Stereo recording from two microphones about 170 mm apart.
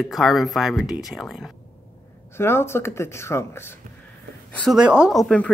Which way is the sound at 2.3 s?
15° left (ahead or behind).